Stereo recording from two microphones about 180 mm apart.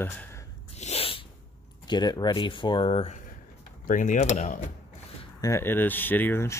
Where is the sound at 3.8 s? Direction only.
45° left (ahead or behind).